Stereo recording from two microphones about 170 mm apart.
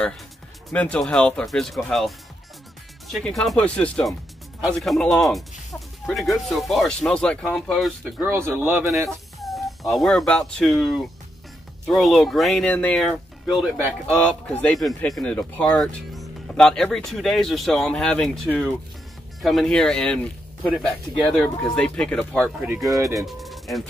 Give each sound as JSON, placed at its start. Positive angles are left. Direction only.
{"t": 0.7, "sound": "speech", "side_deg": 5}
{"t": 9.4, "sound": "speech", "side_deg": 0}